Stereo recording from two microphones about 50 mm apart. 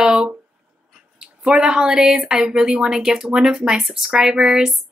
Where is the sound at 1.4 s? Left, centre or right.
Centre.